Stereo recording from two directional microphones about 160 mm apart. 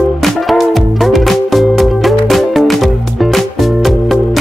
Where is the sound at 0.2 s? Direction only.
Centre (ahead or behind).